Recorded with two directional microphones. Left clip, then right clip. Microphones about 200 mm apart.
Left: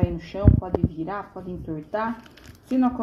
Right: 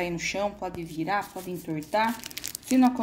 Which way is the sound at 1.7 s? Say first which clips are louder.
Right 2 dB; 90° right.